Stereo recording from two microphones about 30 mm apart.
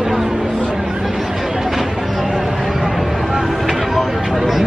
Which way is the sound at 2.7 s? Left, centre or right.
Centre.